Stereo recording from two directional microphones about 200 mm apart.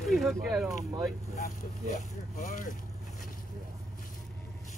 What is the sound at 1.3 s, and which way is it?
Speech, 40° left (ahead or behind).